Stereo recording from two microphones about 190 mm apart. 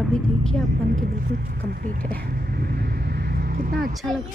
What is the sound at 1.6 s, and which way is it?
Speech, 45° right (ahead or behind).